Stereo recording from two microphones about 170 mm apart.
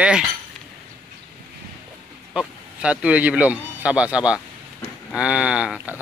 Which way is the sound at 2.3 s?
5° right (ahead or behind).